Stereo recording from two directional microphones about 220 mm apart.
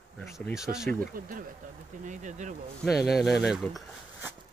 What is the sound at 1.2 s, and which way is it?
Speech, 40° right (ahead or behind).